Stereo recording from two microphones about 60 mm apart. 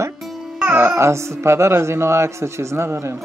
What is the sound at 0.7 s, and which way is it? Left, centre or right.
Speech, right.